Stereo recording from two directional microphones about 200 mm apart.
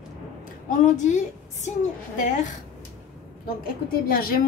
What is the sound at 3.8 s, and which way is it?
Speech, 45° left (ahead or behind).